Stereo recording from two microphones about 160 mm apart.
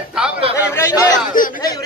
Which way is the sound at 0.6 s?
15° left (ahead or behind).